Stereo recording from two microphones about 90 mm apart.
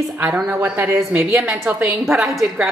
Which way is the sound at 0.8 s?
35° right (ahead or behind).